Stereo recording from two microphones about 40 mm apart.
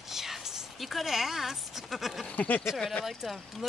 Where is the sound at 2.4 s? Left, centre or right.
Left.